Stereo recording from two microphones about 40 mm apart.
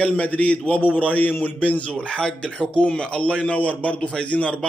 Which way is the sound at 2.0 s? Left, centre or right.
Left.